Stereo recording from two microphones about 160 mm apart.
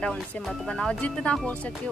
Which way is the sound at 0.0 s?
5° left (ahead or behind).